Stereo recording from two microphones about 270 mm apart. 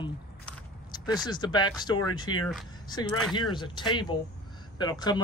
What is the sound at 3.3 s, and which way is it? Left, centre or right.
Speech, centre.